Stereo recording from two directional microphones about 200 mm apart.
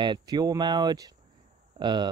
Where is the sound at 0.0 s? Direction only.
20° right (ahead or behind).